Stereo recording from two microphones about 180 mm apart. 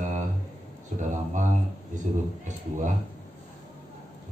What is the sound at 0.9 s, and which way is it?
Speech, 45° right (ahead or behind).